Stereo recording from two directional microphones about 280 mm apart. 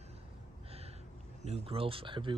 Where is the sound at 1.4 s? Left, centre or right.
Right.